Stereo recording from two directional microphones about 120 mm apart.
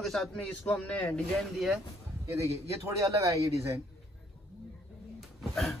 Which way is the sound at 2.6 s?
25° right (ahead or behind).